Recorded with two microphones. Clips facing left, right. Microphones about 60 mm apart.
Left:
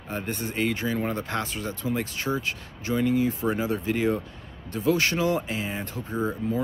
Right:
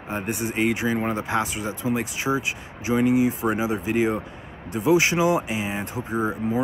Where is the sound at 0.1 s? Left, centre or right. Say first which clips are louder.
Right 4 dB; centre.